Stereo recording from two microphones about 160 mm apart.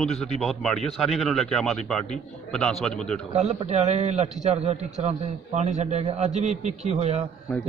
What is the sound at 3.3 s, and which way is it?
A man's voice, 45° right (ahead or behind).